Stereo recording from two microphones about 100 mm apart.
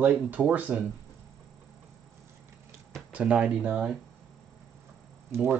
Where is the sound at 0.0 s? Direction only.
15° right (ahead or behind).